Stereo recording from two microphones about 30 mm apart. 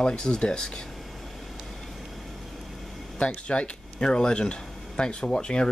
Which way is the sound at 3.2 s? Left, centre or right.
Left.